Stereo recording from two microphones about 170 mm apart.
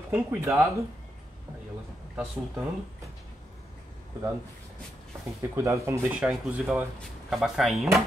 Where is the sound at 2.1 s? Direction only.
10° right (ahead or behind).